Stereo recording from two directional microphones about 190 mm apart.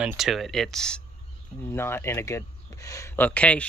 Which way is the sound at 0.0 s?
Centre (ahead or behind).